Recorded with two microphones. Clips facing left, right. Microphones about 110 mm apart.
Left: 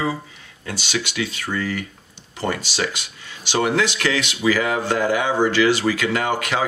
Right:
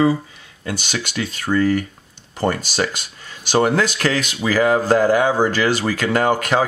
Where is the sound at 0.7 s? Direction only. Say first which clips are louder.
Right 1 dB; 50° right (ahead or behind).